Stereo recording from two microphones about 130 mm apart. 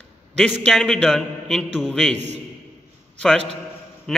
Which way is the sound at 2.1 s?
60° right (ahead or behind).